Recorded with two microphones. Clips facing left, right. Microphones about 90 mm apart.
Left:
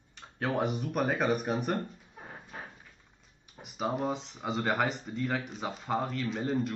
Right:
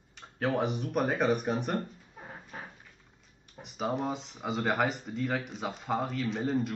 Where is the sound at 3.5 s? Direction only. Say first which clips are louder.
Even; centre (ahead or behind).